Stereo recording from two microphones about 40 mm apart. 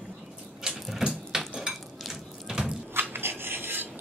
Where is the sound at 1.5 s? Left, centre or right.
Centre.